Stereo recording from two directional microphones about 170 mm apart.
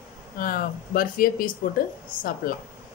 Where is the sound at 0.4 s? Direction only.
55° left (ahead or behind).